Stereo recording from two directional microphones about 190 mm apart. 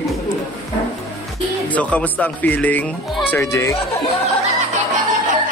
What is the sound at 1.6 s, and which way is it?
Speech, 10° left (ahead or behind).